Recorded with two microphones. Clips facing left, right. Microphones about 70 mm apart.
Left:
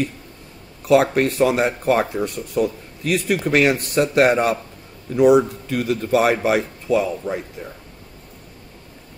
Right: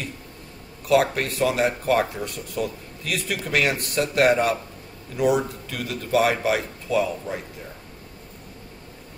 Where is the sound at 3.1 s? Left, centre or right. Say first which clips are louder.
Left 8 dB; left.